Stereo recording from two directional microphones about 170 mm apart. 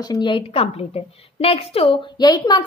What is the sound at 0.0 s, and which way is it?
A woman's voice, 25° left (ahead or behind).